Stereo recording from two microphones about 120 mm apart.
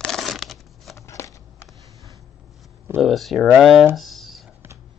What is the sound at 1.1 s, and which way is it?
Shuffling cards, 20° left (ahead or behind).